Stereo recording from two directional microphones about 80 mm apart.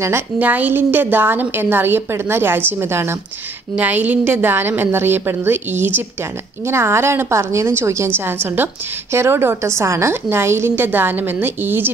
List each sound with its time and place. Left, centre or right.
0.4 s a woman's voice: right